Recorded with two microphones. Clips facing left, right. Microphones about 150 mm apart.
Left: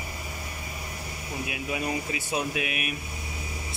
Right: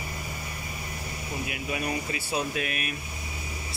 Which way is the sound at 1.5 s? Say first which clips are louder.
Left 1 dB; 20° left (ahead or behind).